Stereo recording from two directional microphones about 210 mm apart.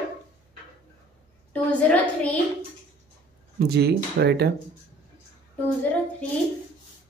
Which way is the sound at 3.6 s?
50° right (ahead or behind).